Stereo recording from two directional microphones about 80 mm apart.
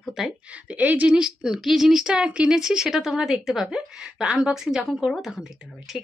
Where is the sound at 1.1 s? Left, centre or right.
Centre.